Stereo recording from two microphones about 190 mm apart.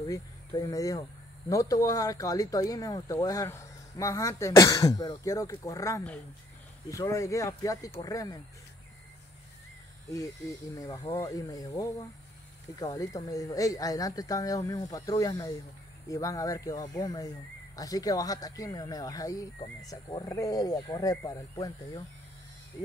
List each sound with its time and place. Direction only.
0.0 s speech: 20° left (ahead or behind)
10.1 s speech: 20° left (ahead or behind)